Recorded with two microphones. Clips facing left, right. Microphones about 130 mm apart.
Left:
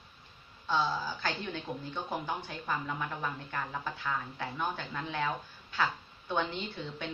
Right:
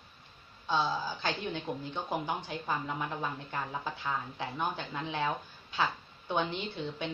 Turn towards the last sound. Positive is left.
turn(degrees=-20)  # may be behind; listen again after turning